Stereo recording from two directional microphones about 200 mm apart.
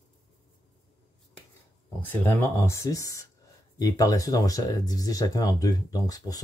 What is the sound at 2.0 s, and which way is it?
Speech, 10° left (ahead or behind).